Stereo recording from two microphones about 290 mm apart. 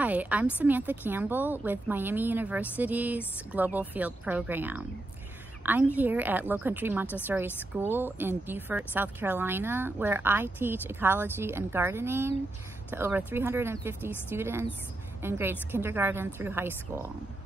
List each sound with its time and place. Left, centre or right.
0.0 s a woman's voice: centre